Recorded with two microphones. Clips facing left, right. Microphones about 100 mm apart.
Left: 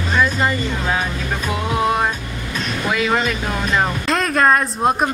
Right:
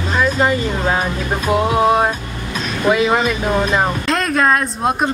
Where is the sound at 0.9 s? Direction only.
35° right (ahead or behind).